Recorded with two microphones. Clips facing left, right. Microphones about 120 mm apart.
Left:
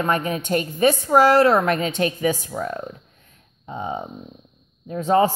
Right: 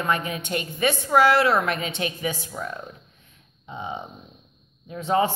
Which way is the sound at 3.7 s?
40° left (ahead or behind).